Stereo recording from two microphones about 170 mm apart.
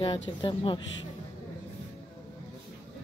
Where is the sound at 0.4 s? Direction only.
30° left (ahead or behind).